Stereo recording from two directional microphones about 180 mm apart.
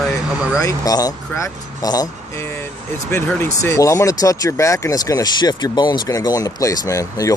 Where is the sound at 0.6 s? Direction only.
20° left (ahead or behind).